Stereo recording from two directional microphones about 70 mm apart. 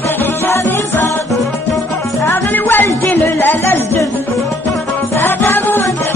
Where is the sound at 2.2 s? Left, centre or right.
Left.